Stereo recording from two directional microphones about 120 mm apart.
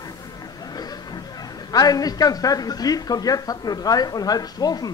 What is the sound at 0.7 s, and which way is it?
A man's voice, 35° left (ahead or behind).